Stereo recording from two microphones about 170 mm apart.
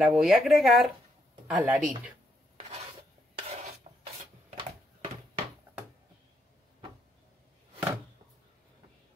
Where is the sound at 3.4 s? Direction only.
40° right (ahead or behind).